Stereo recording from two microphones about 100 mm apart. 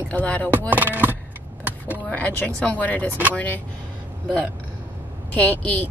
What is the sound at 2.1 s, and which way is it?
Speech, 15° left (ahead or behind).